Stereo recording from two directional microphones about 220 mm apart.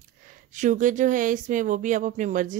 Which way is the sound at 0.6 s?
35° right (ahead or behind).